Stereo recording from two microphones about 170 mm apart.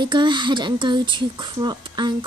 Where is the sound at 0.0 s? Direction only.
25° right (ahead or behind).